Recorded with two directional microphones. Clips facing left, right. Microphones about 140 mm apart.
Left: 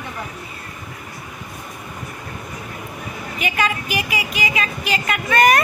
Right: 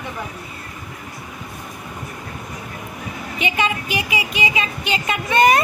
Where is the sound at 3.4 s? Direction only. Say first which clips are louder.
Even; 25° right (ahead or behind).